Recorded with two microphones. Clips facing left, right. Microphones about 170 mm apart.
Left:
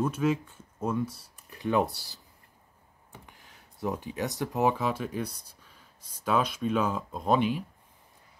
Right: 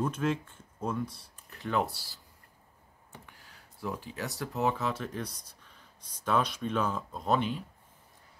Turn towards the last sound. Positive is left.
turn(degrees=15)  # may be behind; listen again after turning